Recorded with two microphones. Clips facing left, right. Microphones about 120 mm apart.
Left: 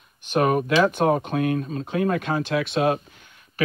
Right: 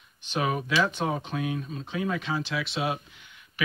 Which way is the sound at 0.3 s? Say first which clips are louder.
Left 7 dB; 55° left (ahead or behind).